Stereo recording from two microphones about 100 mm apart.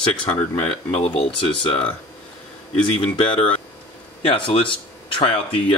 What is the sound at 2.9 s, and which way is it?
Speech, 70° left (ahead or behind).